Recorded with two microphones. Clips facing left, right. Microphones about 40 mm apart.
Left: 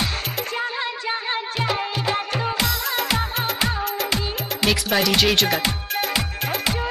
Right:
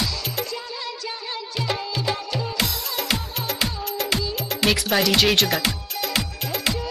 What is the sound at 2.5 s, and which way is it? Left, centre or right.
Music, centre.